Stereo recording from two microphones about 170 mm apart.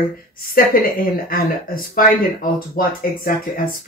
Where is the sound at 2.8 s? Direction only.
55° left (ahead or behind).